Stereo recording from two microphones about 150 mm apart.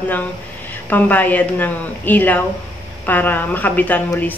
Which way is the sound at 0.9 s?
10° left (ahead or behind).